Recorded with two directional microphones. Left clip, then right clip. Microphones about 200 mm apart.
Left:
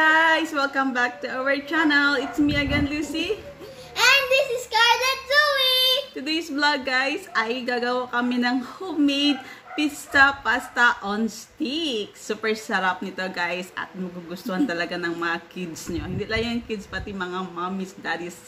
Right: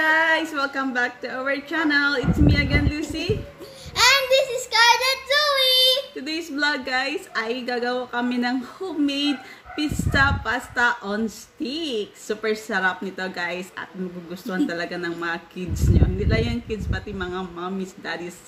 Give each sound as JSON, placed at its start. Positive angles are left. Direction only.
{"t": 0.0, "sound": "a woman's voice", "side_deg": 5}
{"t": 3.9, "sound": "child singing", "side_deg": -20}
{"t": 6.1, "sound": "a woman's voice", "side_deg": 5}